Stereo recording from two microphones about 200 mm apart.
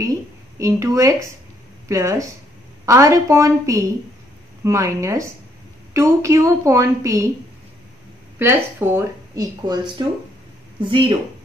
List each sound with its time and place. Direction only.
0.0 s a woman's voice: 15° right (ahead or behind)
8.4 s speech: 10° right (ahead or behind)